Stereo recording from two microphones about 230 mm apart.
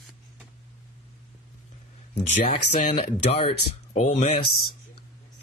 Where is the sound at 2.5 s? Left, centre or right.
Left.